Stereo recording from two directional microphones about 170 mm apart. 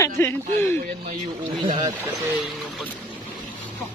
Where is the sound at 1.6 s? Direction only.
25° right (ahead or behind).